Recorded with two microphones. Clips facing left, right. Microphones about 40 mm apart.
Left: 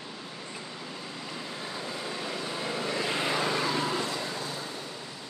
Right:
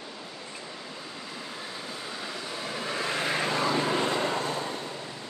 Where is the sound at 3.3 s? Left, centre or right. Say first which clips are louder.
Even; right.